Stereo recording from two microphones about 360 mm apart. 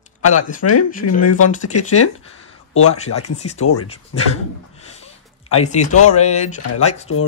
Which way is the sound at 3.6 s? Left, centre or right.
Left.